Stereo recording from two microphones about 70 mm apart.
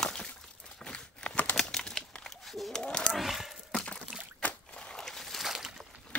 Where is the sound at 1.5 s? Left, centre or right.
Centre.